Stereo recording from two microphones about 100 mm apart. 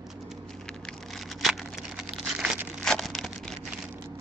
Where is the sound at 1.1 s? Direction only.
Centre (ahead or behind).